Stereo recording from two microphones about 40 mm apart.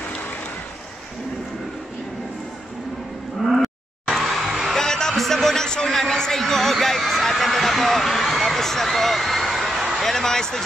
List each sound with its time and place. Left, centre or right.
4.2 s music: centre
4.7 s music: centre
5.1 s music: centre
5.9 s a sound: centre